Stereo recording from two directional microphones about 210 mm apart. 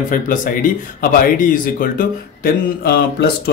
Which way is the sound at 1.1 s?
40° left (ahead or behind).